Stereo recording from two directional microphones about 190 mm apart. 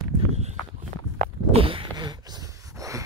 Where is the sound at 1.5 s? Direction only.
30° right (ahead or behind).